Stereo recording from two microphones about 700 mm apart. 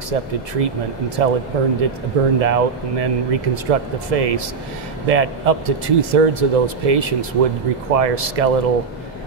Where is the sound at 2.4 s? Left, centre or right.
Right.